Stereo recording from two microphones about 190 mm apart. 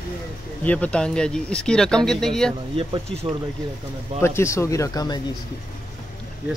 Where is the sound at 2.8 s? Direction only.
25° right (ahead or behind).